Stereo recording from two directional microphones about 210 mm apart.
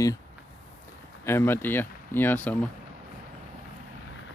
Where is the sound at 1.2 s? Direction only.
10° left (ahead or behind).